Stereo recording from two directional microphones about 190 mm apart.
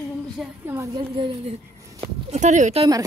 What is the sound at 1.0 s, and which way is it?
A woman's voice, 30° right (ahead or behind).